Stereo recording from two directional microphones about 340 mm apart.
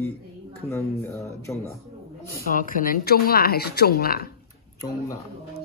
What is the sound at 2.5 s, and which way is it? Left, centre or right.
Speech, left.